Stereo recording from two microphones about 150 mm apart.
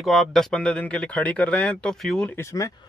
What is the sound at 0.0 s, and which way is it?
Speech, centre (ahead or behind).